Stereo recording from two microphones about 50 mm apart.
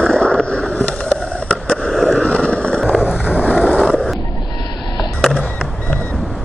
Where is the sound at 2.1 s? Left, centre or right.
Left.